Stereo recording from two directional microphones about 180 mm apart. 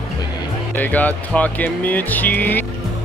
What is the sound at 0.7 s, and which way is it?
Speech, 10° left (ahead or behind).